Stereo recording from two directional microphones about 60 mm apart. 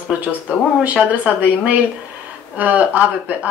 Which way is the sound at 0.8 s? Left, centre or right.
Right.